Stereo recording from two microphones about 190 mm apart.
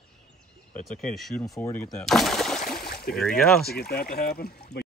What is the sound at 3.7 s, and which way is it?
Speech, 55° left (ahead or behind).